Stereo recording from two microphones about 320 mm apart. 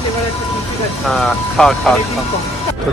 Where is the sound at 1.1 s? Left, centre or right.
Centre.